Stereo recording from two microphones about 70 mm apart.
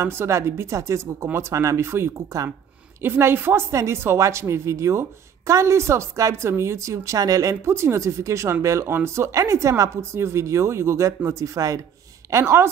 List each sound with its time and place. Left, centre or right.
0.0 s a woman's voice: right
1.9 s a woman's voice: right
7.6 s a woman's voice: right
12.3 s a woman's voice: right